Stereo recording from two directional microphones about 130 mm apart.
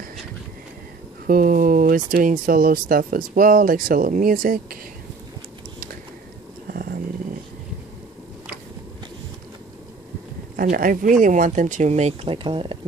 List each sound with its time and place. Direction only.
1.2 s a sound: 90° right
2.0 s speech: 90° right
10.6 s speech: 90° right; by 12.7 s 40° right (ahead or behind)